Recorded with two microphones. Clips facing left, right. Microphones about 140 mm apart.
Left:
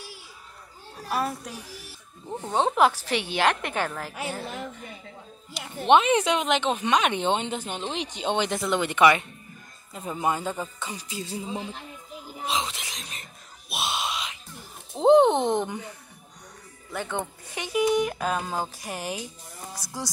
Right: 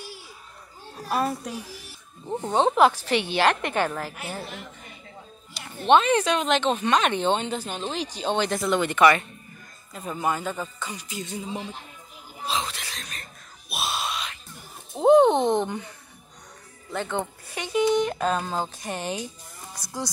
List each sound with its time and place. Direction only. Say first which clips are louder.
1.0 s speech: right 2 dB; centre (ahead or behind)
2.2 s speech: right 3 dB; 20° right (ahead or behind)
2.7 s speech: right 2 dB; 10° left (ahead or behind)
5.5 s speech: even; 15° left (ahead or behind)
12.4 s a sound: even; 20° left (ahead or behind)
15.3 s speech: right 2 dB; 15° right (ahead or behind)
16.9 s speech: right 2 dB; 10° left (ahead or behind)